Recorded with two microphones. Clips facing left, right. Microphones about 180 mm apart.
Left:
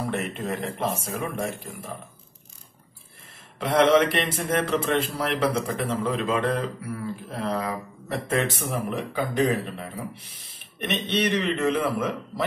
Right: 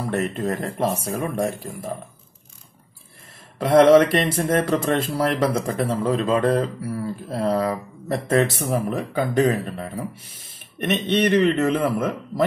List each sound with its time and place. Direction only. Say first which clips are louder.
0.1 s speech: right 5 dB; 40° right (ahead or behind)
3.5 s a man's voice: right 6 dB; 40° right (ahead or behind)